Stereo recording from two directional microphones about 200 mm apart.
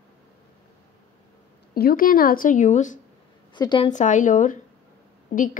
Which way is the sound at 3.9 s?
40° left (ahead or behind).